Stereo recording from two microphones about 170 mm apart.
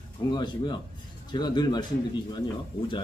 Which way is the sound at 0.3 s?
25° left (ahead or behind).